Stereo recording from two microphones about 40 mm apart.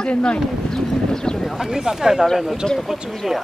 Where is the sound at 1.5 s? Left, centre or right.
Centre.